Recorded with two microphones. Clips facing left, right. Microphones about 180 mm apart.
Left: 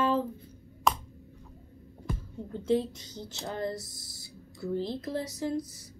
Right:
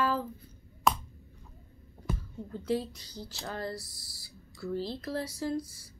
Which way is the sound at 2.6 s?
25° left (ahead or behind).